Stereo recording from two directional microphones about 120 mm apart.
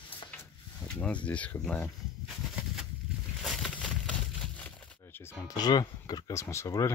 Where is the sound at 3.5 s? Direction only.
5° left (ahead or behind).